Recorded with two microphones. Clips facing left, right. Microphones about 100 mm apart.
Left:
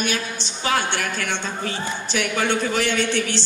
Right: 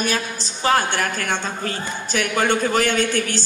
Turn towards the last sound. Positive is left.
turn(degrees=-45)  # may be behind; listen again after turning